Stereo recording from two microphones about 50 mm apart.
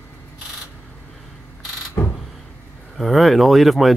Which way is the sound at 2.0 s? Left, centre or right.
Left.